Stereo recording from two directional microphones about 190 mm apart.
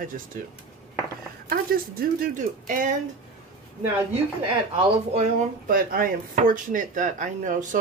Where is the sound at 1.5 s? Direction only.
50° right (ahead or behind).